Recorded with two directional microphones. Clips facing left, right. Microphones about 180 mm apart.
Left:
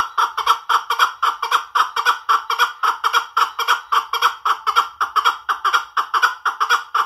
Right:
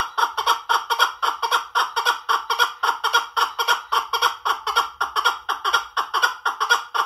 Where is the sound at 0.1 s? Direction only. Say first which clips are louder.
Right 2 dB; 35° right (ahead or behind).